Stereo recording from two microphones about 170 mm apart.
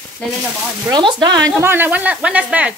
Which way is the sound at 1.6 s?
10° right (ahead or behind).